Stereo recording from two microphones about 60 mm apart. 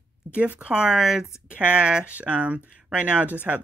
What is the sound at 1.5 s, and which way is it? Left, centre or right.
Speech, right.